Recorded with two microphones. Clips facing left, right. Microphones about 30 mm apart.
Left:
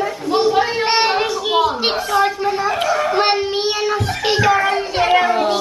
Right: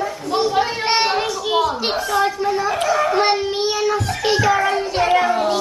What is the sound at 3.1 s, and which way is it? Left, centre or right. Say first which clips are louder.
Child singing: left 1 dB; left.